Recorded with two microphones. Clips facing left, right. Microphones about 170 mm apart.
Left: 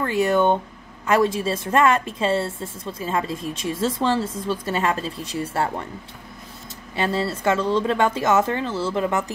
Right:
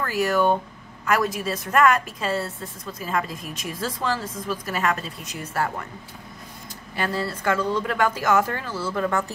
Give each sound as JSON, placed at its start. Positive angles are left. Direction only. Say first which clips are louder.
{"t": 0.0, "sound": "a woman's voice", "louder": "left 3 dB", "side_deg": 25}
{"t": 7.0, "sound": "a woman's voice", "louder": "left 3 dB", "side_deg": 25}